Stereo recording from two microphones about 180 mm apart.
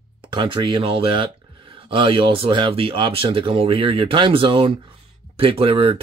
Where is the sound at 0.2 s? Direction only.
25° right (ahead or behind).